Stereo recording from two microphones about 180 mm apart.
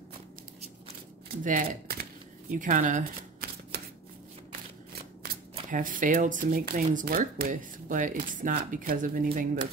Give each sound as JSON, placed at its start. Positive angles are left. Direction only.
{"t": 1.4, "sound": "speech", "side_deg": -45}
{"t": 2.6, "sound": "shuffling cards", "side_deg": -45}
{"t": 5.2, "sound": "speech", "side_deg": -50}